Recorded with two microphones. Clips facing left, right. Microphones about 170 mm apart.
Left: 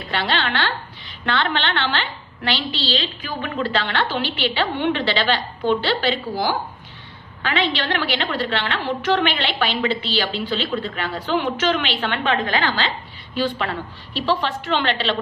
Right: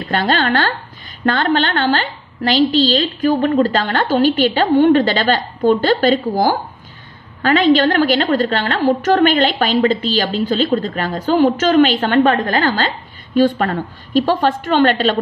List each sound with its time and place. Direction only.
0.1 s a woman's voice: 45° right (ahead or behind)